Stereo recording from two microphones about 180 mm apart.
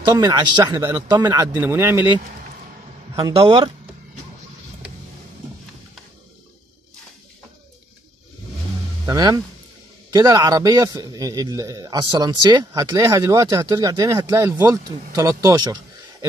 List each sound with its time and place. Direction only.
0.2 s a man's voice: 25° right (ahead or behind)
0.7 s speech: 15° right (ahead or behind)
3.2 s speech: 30° right (ahead or behind)
9.0 s a man's voice: 20° right (ahead or behind)